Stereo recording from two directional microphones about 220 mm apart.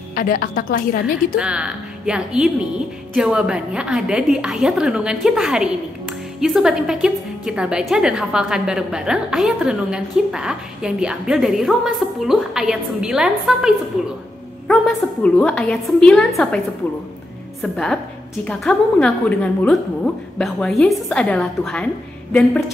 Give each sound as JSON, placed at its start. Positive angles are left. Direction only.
{"t": 0.1, "sound": "a woman's voice", "side_deg": 40}
{"t": 1.0, "sound": "a woman's voice", "side_deg": -5}